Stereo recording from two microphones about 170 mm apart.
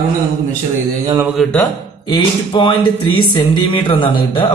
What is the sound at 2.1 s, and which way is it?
Speech, 30° left (ahead or behind).